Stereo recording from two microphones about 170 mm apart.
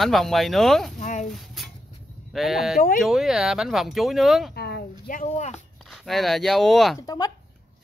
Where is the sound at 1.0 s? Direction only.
45° left (ahead or behind).